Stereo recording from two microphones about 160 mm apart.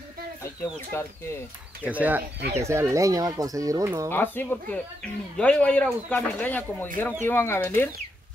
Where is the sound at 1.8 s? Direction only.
10° right (ahead or behind).